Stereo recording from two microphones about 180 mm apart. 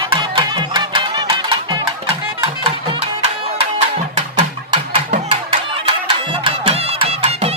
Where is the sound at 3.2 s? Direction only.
35° right (ahead or behind).